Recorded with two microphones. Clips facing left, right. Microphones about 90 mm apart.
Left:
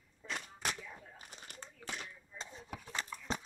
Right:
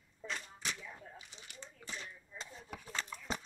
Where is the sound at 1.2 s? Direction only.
45° left (ahead or behind).